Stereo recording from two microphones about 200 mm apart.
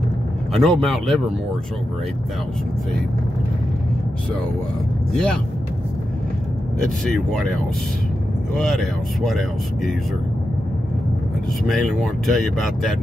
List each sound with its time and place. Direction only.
0.5 s speech: centre (ahead or behind)
5.1 s speech: 5° left (ahead or behind)
6.8 s speech: centre (ahead or behind)
8.5 s speech: centre (ahead or behind)
11.6 s speech: centre (ahead or behind)